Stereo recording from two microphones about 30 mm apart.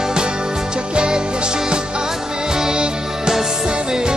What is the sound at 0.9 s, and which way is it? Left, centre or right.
Music, right.